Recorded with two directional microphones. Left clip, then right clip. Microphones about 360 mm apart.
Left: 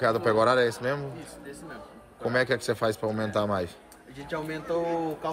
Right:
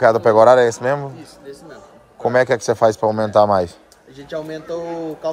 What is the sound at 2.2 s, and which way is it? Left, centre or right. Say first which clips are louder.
A man's voice: right 10 dB; centre.